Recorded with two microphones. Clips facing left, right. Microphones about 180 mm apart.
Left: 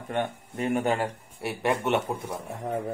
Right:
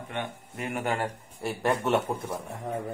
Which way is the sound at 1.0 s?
5° left (ahead or behind).